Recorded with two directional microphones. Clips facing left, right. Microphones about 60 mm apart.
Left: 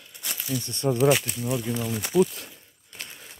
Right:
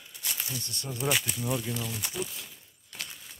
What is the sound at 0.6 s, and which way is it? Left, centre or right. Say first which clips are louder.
Speech: left 16 dB; left.